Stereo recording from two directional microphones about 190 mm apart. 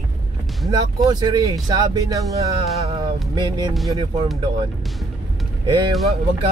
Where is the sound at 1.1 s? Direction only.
20° right (ahead or behind).